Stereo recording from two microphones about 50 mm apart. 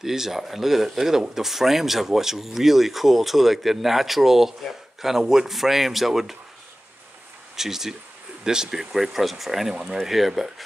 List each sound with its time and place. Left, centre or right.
0.0 s speech: centre
7.5 s speech: centre